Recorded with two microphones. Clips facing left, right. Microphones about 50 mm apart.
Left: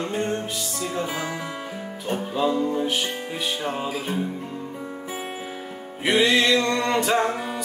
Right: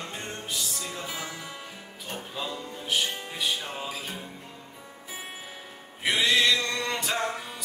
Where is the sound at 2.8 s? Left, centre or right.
Centre.